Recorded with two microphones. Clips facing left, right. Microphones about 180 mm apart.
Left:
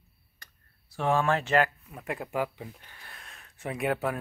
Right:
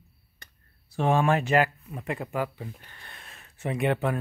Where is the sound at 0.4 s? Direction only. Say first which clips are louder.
Right 2 dB; 20° right (ahead or behind).